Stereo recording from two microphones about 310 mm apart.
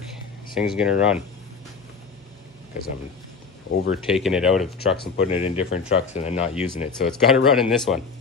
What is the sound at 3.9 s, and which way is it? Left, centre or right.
Speech, centre.